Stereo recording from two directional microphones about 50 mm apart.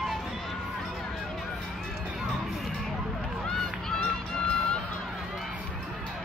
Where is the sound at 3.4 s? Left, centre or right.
Centre.